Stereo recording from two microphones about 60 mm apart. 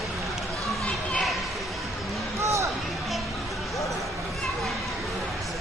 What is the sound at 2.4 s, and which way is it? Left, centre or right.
Basketball bounce, right.